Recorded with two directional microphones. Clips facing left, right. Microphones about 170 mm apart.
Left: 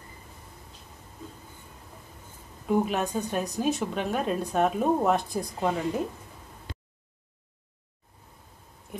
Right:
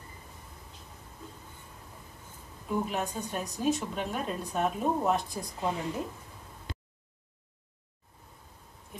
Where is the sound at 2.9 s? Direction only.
75° left (ahead or behind).